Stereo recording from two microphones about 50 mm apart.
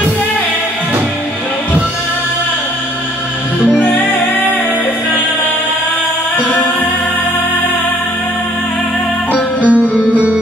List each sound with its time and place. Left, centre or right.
3.8 s music: left
9.7 s music: right